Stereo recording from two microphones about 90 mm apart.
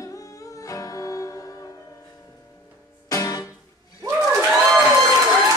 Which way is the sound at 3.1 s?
40° left (ahead or behind).